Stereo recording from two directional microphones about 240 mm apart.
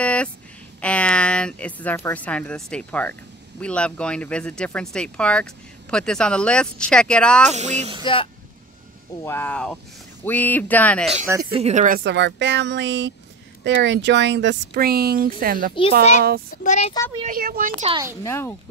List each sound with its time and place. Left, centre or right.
0.0 s a sound: centre
0.7 s speech: centre
7.5 s speech: right
8.0 s speech: left
9.2 s speech: centre
11.5 s speech: right
16.0 s speech: left
17.3 s speech: right
18.2 s speech: centre